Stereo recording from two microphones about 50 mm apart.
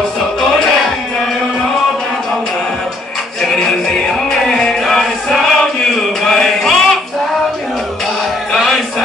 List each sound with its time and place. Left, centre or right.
3.5 s music: centre
8.5 s music: centre